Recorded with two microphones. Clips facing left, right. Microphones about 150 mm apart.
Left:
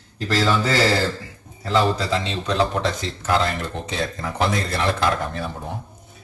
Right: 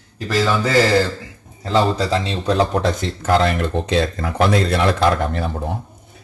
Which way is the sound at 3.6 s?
70° right (ahead or behind).